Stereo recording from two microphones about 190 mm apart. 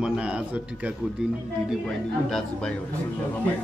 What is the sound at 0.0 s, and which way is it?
A man's voice, 5° right (ahead or behind).